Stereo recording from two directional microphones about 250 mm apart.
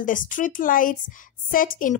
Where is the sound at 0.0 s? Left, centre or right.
Left.